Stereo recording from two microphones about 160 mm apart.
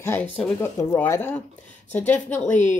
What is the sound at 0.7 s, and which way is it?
Speech, 20° left (ahead or behind).